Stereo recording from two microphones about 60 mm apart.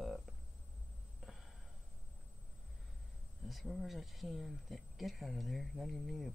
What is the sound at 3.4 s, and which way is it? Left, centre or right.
Speech, centre.